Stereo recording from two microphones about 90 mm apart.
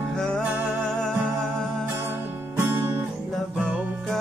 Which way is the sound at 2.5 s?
25° right (ahead or behind).